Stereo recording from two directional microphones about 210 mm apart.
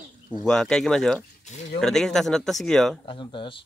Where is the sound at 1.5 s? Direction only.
35° left (ahead or behind).